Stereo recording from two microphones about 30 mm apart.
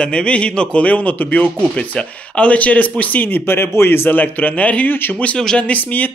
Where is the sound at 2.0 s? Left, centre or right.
Left.